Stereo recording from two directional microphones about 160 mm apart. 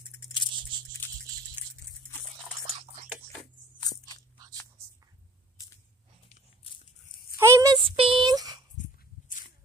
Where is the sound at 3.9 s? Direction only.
25° left (ahead or behind).